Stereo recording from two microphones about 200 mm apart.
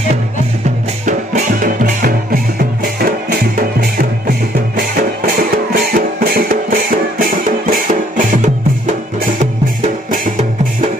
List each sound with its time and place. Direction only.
1.0 s music: 45° right (ahead or behind)